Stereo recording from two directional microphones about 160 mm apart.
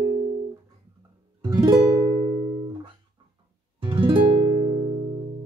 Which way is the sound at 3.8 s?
30° right (ahead or behind).